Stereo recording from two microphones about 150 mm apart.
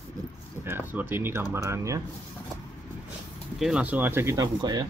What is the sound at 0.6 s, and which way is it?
Speech, 15° right (ahead or behind).